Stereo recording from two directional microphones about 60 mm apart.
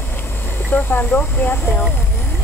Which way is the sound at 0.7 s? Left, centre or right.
Left.